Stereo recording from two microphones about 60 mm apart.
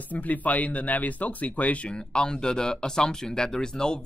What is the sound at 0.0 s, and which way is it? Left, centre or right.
Speech, left.